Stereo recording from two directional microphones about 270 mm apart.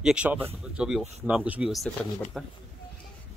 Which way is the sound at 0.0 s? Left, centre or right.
Centre.